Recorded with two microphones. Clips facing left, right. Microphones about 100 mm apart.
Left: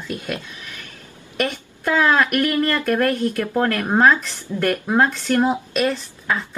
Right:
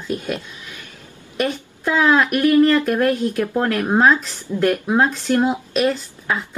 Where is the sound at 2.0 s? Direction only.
15° right (ahead or behind).